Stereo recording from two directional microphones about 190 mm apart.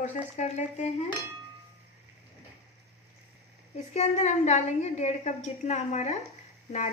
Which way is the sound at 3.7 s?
35° left (ahead or behind).